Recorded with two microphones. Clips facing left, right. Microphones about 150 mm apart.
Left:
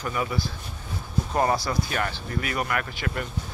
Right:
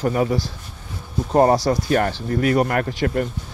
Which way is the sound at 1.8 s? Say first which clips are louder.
Right 10 dB; 45° right (ahead or behind).